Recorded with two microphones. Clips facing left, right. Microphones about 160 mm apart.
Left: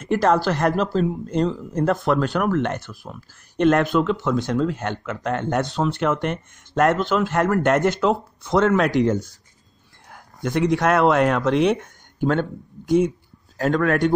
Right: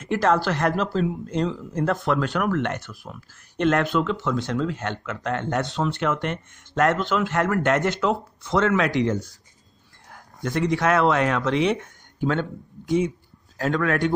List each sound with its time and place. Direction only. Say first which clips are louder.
0.1 s speech: left 2 dB; 40° left (ahead or behind)
3.6 s speech: left 4 dB; 45° left (ahead or behind)
10.4 s speech: left 3 dB; 55° left (ahead or behind)